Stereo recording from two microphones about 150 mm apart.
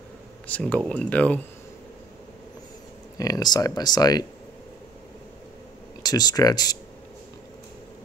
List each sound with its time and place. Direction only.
0.5 s speech: 10° left (ahead or behind)
3.2 s speech: 25° left (ahead or behind)
6.0 s speech: 25° left (ahead or behind)